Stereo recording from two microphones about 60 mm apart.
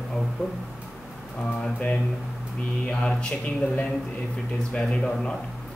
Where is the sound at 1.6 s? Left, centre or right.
Centre.